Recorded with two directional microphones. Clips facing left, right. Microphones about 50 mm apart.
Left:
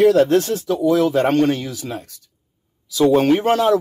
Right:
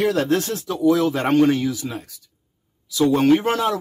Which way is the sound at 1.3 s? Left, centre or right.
Centre.